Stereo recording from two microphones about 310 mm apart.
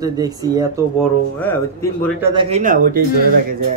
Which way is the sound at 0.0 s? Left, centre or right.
Centre.